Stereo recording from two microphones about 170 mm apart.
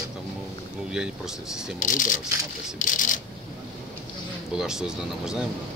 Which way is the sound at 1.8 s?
50° left (ahead or behind).